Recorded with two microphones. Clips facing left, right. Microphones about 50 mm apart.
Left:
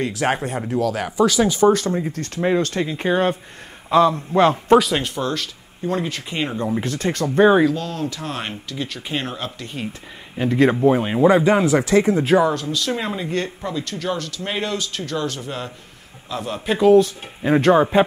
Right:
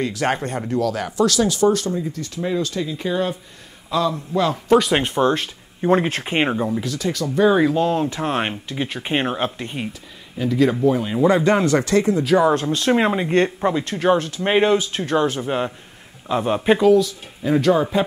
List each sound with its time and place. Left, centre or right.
0.0 s speech: centre; by 4.7 s left
4.9 s speech: right
6.8 s speech: left
7.7 s speech: right
10.3 s speech: left
11.1 s speech: centre
12.5 s speech: right
16.9 s speech: left